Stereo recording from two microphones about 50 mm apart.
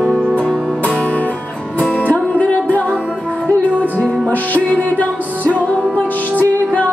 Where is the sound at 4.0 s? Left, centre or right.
Left.